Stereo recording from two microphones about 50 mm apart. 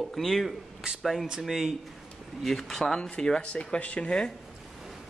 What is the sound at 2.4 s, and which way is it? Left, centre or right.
Speech, centre.